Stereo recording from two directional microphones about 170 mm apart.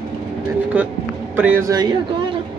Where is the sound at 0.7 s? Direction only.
10° right (ahead or behind).